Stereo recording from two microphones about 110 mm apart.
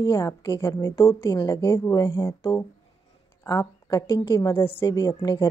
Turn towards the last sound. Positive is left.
turn(degrees=35)  # may be behind; listen again after turning